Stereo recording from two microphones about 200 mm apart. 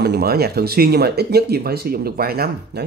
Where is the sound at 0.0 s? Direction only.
50° right (ahead or behind).